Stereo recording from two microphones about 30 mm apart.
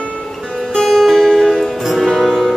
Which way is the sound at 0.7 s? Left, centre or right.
Left.